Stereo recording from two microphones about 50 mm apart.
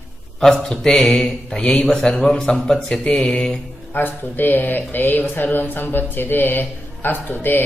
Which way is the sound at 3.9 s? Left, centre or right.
Left.